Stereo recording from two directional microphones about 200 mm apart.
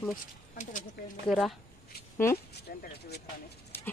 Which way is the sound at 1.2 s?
Centre (ahead or behind).